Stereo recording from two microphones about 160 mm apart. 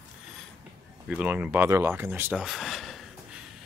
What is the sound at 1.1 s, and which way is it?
Speech, 10° right (ahead or behind).